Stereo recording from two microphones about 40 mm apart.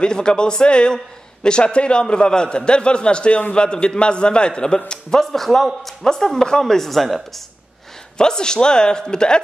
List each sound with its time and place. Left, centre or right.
0.0 s a man's voice: left
5.2 s a man's voice: centre
8.2 s a man's voice: centre